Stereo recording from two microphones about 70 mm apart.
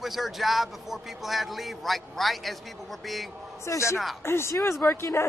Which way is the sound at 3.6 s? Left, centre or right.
Left.